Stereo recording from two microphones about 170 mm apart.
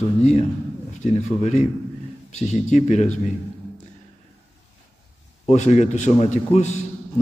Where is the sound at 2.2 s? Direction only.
45° left (ahead or behind).